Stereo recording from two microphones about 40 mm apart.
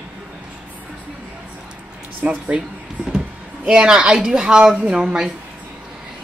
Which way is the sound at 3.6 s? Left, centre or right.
Right.